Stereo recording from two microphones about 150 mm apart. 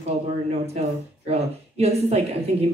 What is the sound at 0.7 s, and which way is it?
Speech, 45° right (ahead or behind).